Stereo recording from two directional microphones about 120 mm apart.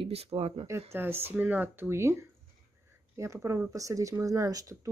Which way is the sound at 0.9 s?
15° right (ahead or behind).